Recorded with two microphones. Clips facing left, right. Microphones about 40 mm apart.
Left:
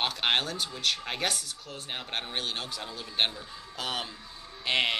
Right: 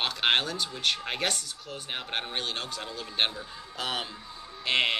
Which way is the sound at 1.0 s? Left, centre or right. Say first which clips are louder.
Right 1 dB; centre.